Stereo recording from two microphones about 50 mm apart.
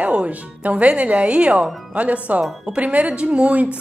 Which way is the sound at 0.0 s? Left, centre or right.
Right.